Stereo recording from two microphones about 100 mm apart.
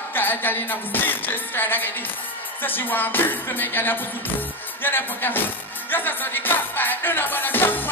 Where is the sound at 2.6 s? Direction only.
20° left (ahead or behind).